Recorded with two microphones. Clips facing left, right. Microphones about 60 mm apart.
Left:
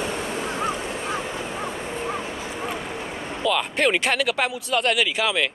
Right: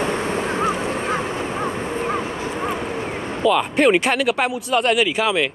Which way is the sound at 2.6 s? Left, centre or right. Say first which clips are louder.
Right 5 dB; right.